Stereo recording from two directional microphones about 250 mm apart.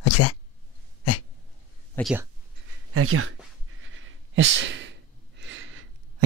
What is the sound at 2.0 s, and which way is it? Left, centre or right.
Beatboxing, centre.